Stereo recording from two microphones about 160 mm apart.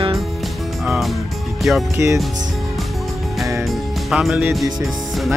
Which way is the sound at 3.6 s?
Centre (ahead or behind).